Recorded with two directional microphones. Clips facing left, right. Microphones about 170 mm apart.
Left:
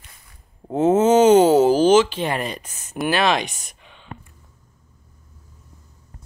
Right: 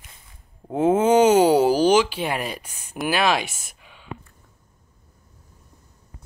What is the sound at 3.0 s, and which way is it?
Speech, 5° right (ahead or behind).